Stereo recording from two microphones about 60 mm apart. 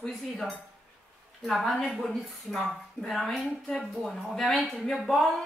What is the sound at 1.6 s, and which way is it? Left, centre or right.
Speech, centre.